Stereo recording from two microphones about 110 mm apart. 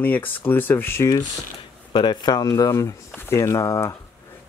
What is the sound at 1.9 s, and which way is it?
Speech, 40° left (ahead or behind).